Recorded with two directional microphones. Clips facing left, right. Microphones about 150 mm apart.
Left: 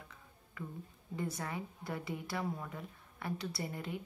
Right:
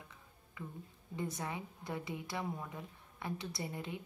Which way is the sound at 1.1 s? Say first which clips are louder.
Left 1 dB; 20° right (ahead or behind).